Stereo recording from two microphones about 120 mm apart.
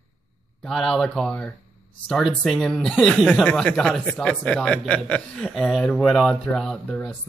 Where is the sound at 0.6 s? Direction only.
Centre (ahead or behind).